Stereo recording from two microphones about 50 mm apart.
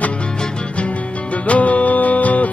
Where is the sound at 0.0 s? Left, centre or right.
Left.